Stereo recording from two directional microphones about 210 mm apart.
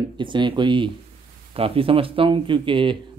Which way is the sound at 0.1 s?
20° right (ahead or behind).